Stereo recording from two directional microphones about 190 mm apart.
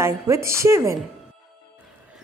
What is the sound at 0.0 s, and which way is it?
Speech, 15° right (ahead or behind).